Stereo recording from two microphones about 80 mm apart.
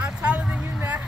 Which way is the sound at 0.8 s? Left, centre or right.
Right.